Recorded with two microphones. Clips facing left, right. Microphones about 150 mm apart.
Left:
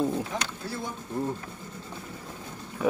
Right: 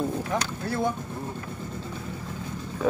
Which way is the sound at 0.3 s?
60° right (ahead or behind).